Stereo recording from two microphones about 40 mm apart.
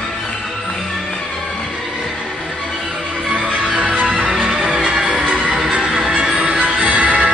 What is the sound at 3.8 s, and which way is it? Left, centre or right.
Music, right.